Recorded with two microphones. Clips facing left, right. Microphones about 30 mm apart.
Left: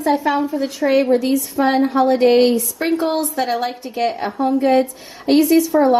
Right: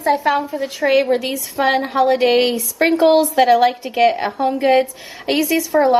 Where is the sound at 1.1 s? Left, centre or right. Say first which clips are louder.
Left 3 dB; right.